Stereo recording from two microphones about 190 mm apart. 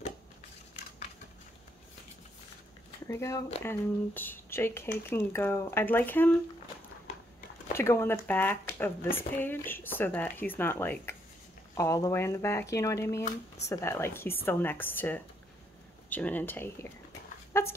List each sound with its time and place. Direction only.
3.1 s speech: 15° left (ahead or behind)
7.7 s speech: 15° left (ahead or behind)
17.5 s dog: 15° left (ahead or behind)